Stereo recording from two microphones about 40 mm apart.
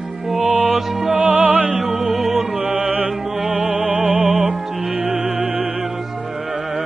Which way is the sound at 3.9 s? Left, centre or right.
Right.